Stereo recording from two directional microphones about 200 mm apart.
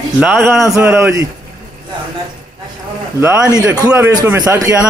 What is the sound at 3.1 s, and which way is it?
A man's voice, 15° right (ahead or behind).